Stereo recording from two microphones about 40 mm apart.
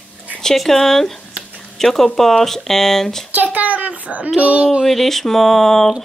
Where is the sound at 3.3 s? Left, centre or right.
Right.